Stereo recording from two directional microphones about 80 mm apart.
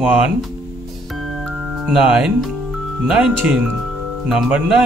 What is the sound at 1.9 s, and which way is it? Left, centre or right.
Speech, centre.